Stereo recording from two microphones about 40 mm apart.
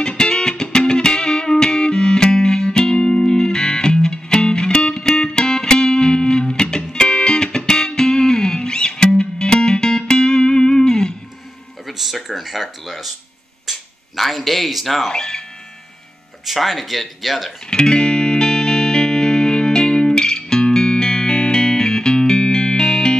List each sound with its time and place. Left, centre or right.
0.1 s music: centre
12.0 s a sound: centre
15.0 s speech: centre
16.4 s speech: centre
17.6 s music: left